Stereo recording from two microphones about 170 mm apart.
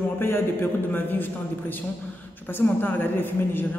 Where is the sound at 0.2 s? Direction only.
10° left (ahead or behind).